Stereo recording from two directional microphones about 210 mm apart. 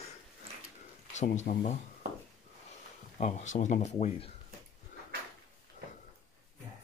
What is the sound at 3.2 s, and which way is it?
Speech, 35° left (ahead or behind).